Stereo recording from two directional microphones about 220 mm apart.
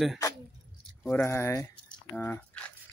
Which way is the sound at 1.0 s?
10° left (ahead or behind).